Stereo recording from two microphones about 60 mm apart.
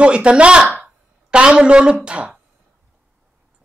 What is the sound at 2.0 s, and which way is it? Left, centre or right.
Speech, centre.